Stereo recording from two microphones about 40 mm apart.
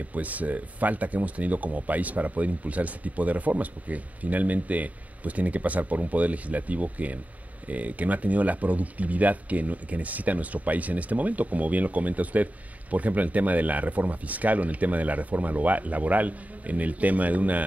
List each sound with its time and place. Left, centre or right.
0.0 s speech: right